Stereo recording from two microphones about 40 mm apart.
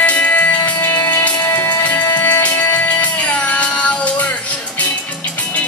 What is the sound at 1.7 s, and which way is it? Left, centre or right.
Music, left.